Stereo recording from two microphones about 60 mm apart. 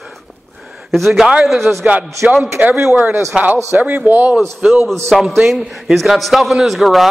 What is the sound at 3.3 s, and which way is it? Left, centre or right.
Speech, right.